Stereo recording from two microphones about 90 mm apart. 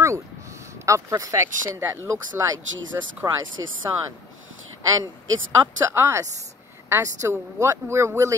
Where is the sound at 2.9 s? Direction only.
30° right (ahead or behind).